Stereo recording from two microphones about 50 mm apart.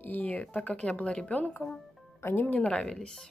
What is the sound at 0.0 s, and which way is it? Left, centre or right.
Speech, left.